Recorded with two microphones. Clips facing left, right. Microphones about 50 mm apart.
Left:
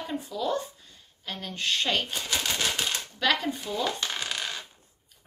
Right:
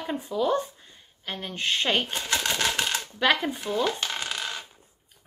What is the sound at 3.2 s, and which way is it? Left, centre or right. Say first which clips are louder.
Speech: right 3 dB; right.